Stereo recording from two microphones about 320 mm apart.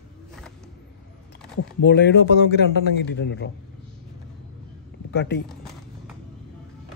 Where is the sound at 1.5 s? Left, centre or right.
Left.